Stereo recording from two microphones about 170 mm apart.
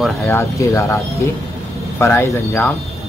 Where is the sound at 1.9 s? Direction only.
15° left (ahead or behind).